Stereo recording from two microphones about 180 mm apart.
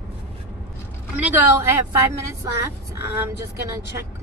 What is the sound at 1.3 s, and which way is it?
Speech, 15° right (ahead or behind).